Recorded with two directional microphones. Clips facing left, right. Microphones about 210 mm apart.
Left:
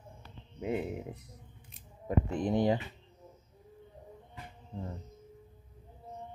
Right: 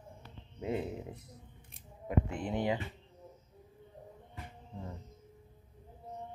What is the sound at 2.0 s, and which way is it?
Speech, 40° left (ahead or behind).